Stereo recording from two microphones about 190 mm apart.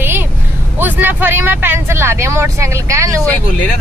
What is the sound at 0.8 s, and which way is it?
Speech, 10° right (ahead or behind).